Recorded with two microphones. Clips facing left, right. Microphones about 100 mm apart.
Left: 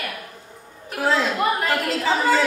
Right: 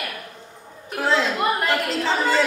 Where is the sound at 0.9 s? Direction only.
Centre (ahead or behind).